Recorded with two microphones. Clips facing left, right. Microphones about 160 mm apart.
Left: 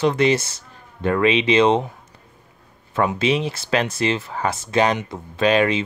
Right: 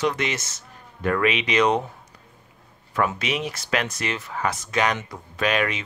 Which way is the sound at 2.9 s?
25° left (ahead or behind).